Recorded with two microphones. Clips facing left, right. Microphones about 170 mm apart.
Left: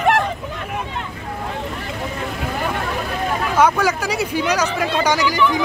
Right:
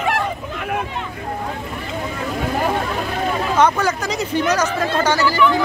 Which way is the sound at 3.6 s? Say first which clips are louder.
Left 1 dB; 10° left (ahead or behind).